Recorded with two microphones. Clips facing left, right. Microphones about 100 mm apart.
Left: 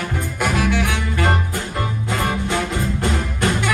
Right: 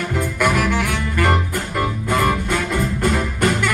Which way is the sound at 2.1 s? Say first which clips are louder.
Right 3 dB; 55° right (ahead or behind).